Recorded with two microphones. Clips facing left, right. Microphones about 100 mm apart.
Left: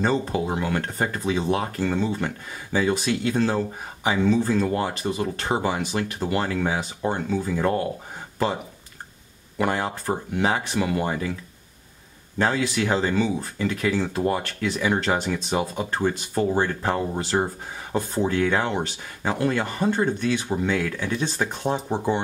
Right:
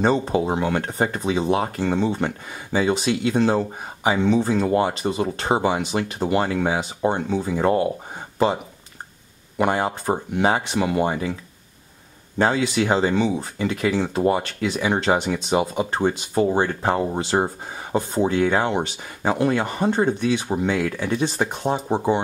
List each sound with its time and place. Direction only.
0.0 s speech: 25° right (ahead or behind)
9.6 s speech: 20° right (ahead or behind)
12.4 s speech: 20° right (ahead or behind)
21.8 s speech: 20° right (ahead or behind)